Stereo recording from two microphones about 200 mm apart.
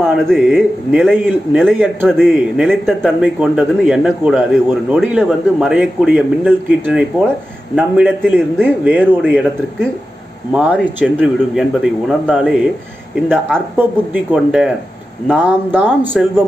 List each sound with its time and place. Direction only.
0.0 s speech: centre (ahead or behind)
13.7 s speech: 5° right (ahead or behind)